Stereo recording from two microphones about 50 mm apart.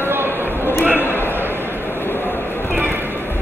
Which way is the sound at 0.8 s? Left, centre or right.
Left.